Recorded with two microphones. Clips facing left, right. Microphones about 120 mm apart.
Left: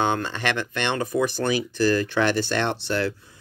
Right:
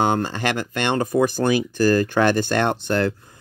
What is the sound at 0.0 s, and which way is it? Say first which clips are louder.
Speech: right 3 dB; 40° right (ahead or behind).